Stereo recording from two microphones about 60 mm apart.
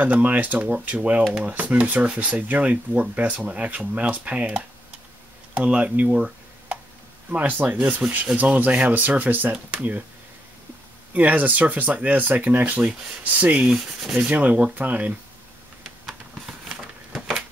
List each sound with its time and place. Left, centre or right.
0.0 s speech: right
7.2 s speech: right
11.1 s speech: right
14.2 s speech: right
16.4 s a sound: centre